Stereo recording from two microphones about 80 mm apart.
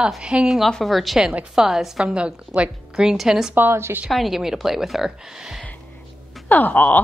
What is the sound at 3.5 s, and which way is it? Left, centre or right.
Speech, right.